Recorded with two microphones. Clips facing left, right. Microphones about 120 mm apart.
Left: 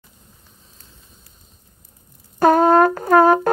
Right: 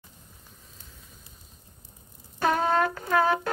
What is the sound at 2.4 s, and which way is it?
Brass instrument, 45° left (ahead or behind).